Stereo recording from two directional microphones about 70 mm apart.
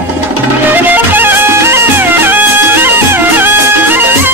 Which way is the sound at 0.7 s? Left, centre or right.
Right.